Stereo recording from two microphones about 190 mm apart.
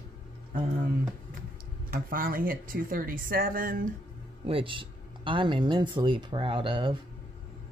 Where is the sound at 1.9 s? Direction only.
50° right (ahead or behind).